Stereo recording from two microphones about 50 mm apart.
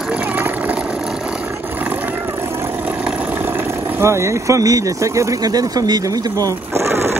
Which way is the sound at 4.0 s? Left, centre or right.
Right.